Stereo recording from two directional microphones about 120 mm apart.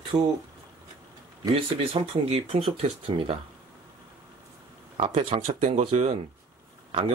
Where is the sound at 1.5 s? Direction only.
50° right (ahead or behind).